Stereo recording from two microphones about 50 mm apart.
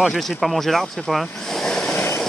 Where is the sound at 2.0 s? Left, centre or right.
Left.